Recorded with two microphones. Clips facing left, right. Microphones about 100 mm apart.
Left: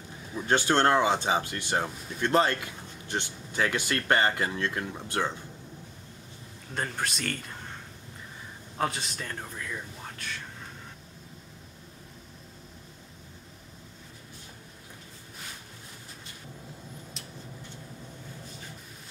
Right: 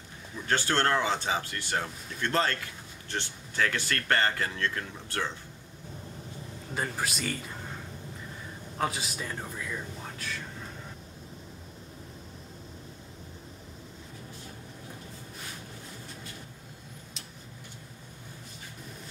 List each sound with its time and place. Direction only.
0.4 s speech: 20° left (ahead or behind)
6.7 s a man's voice: 5° right (ahead or behind)
8.7 s speech: centre (ahead or behind)